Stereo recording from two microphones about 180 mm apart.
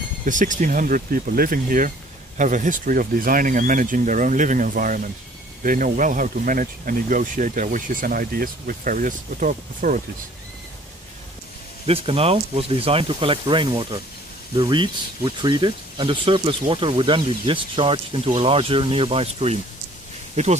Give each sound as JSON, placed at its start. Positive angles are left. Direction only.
{"t": 0.2, "sound": "speech", "side_deg": -45}
{"t": 11.8, "sound": "speech", "side_deg": -30}